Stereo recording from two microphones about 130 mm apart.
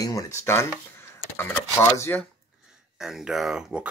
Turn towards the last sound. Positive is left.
turn(degrees=-5)  # may be behind; listen again after turning